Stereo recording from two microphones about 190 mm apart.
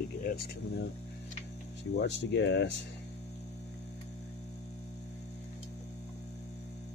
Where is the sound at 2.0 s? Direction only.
65° left (ahead or behind).